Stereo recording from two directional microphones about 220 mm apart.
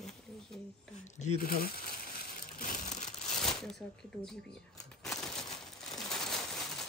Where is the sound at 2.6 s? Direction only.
35° left (ahead or behind).